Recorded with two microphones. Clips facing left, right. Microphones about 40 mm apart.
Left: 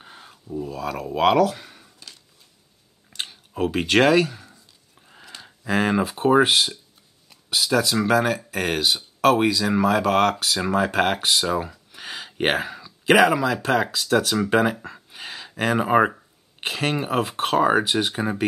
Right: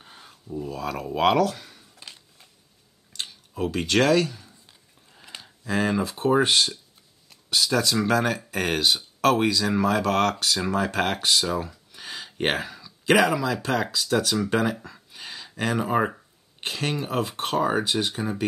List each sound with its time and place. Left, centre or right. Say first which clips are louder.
0.0 s speech: left 3 dB; centre
2.0 s a sound: right 2 dB; right
3.2 s speech: left 4 dB; left
5.6 s speech: left 3 dB; centre
14.3 s a sound: left 4 dB; centre
15.7 s speech: left 5 dB; left